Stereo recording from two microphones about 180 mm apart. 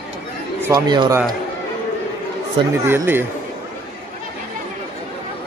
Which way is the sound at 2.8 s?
10° right (ahead or behind).